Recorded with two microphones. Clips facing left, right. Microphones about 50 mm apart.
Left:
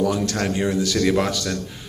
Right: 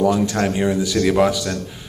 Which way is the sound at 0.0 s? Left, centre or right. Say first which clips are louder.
Right 4 dB; centre.